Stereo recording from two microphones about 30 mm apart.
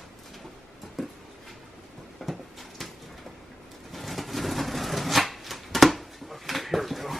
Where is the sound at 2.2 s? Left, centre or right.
Centre.